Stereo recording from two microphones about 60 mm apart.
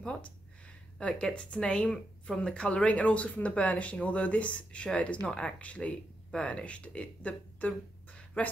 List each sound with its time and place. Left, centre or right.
0.0 s speech: centre